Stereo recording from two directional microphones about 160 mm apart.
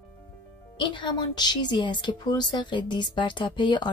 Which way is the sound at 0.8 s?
30° left (ahead or behind).